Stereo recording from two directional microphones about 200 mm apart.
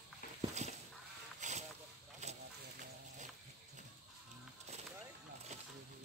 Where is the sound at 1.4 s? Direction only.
40° right (ahead or behind).